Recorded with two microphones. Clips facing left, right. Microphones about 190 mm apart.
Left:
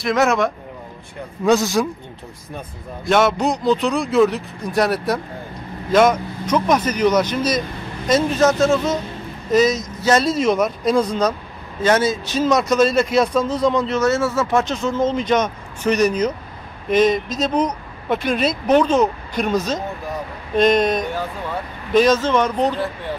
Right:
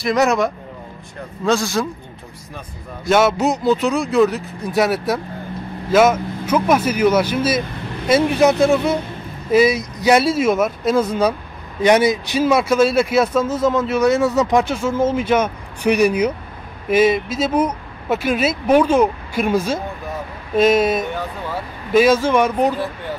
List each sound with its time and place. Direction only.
0.0 s speech: centre (ahead or behind)
1.4 s a man's voice: 15° left (ahead or behind)
3.1 s speech: centre (ahead or behind)